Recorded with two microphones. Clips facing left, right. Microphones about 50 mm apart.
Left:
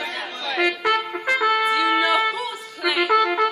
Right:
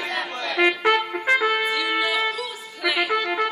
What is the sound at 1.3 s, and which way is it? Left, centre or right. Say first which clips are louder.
Trumpet: left 3 dB; centre.